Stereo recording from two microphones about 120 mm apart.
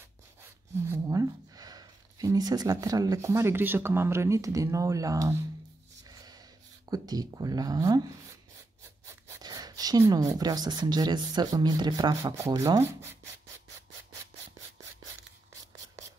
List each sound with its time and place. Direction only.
0.4 s speech: 20° right (ahead or behind)
6.0 s a sound: 30° right (ahead or behind)
6.9 s speech: 35° right (ahead or behind)
9.0 s speech: 30° right (ahead or behind)